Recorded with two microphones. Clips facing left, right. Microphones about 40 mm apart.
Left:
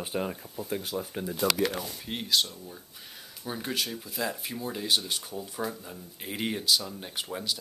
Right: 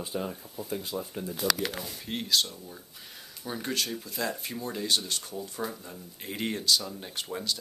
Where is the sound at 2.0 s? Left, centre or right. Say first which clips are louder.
Even; centre.